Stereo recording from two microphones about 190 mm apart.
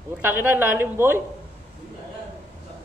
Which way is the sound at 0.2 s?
10° right (ahead or behind).